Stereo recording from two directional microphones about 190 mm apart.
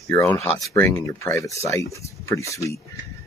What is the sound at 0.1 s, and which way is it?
Speech, 10° left (ahead or behind).